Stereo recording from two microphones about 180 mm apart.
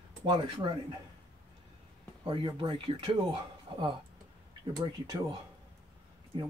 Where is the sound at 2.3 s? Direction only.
30° right (ahead or behind).